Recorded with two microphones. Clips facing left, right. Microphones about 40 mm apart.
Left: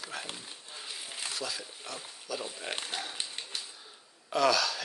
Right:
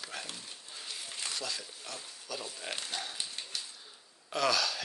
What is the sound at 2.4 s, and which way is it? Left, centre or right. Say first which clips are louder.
Speech: left 2 dB; left.